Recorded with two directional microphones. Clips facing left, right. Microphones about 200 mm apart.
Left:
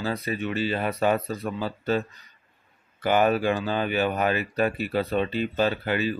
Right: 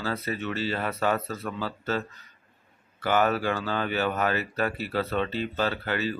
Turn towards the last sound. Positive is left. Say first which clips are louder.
# left 3 dB
turn(degrees=15)  # may be behind; listen again after turning